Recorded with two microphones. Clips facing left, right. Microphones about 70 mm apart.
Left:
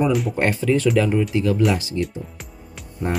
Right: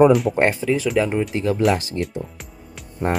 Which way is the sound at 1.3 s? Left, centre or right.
Right.